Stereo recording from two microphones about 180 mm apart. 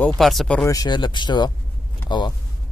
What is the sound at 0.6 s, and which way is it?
Speech, 20° left (ahead or behind).